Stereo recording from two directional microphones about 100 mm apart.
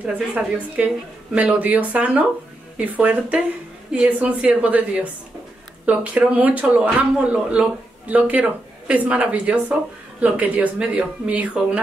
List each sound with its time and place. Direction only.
0.0 s speech: 15° right (ahead or behind)